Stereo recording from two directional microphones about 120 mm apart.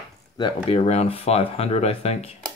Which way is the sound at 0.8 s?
55° left (ahead or behind).